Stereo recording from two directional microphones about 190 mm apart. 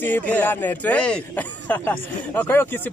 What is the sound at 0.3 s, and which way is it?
Speech, 10° left (ahead or behind).